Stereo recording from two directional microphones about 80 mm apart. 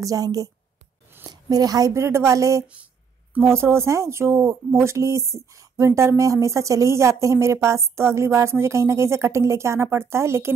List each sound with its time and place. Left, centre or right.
0.0 s a woman's voice: right